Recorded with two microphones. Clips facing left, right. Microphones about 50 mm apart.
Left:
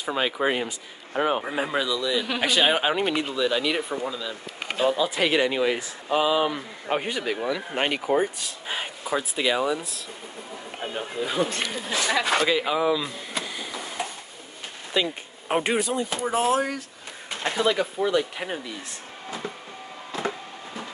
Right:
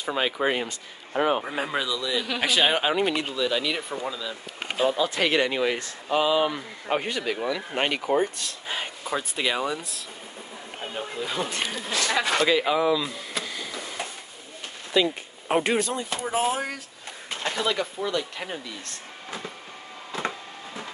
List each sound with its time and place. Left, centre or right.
0.0 s speech: centre
2.9 s speech: left
3.3 s speech: centre
12.2 s speech: centre
13.3 s a sound: centre
15.0 s speech: centre
17.4 s speech: centre